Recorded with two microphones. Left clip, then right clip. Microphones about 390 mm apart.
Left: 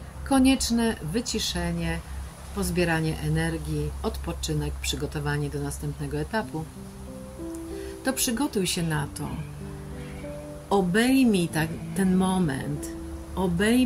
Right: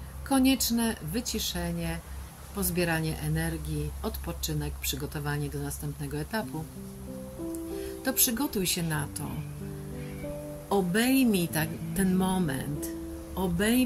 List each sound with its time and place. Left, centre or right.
0.3 s speech: right
8.0 s speech: right
10.7 s speech: right